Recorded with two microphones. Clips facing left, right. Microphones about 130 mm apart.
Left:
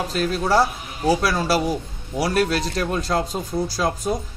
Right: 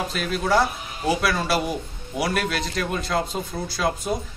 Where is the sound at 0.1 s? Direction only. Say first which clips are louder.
Left 3 dB; 35° left (ahead or behind).